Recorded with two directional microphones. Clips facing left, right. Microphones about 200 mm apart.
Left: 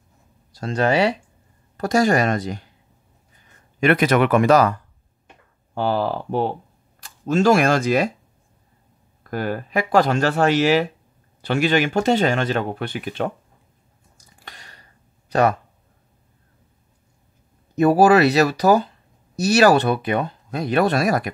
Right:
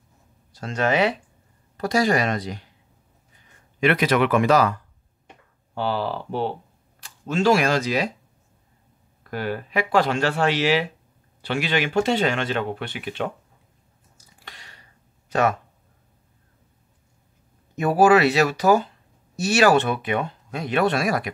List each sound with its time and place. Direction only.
0.5 s speech: 35° left (ahead or behind)
1.8 s speech: 45° left (ahead or behind)
3.8 s speech: 45° left (ahead or behind)
5.8 s speech: 45° left (ahead or behind)
9.2 s speech: 45° left (ahead or behind)
14.4 s a sound: 45° left (ahead or behind)
15.2 s speech: 35° left (ahead or behind)
17.7 s speech: 35° left (ahead or behind)